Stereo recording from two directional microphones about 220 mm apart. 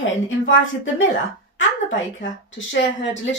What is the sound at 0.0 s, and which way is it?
Speech, 65° left (ahead or behind).